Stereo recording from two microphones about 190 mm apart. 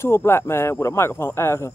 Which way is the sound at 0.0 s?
15° left (ahead or behind).